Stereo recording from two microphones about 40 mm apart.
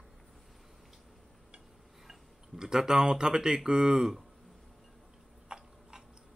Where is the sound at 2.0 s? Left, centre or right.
Centre.